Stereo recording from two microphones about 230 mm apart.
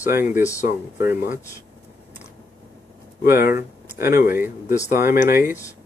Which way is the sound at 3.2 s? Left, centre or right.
Left.